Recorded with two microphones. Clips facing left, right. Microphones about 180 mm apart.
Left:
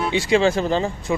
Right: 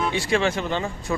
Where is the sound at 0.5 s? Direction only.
35° left (ahead or behind).